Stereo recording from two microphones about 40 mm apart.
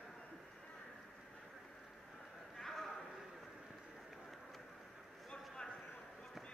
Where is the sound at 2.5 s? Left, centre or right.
Centre.